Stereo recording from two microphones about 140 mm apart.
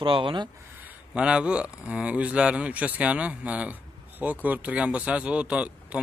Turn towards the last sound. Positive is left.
turn(degrees=-10)  # may be behind; listen again after turning